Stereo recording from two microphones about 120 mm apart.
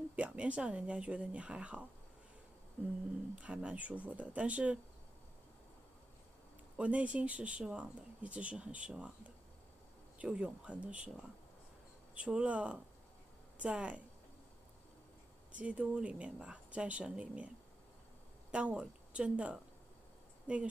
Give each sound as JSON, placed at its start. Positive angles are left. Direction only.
{"t": 0.1, "sound": "speech", "side_deg": -10}
{"t": 3.3, "sound": "speech", "side_deg": -10}
{"t": 6.8, "sound": "speech", "side_deg": -10}
{"t": 10.1, "sound": "speech", "side_deg": -10}
{"t": 15.5, "sound": "speech", "side_deg": -10}
{"t": 18.5, "sound": "speech", "side_deg": -10}